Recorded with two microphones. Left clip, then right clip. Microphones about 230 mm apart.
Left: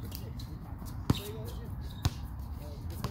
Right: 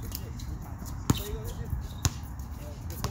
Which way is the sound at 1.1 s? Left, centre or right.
Right.